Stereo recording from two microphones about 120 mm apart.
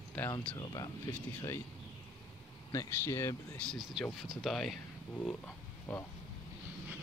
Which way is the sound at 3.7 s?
Centre (ahead or behind).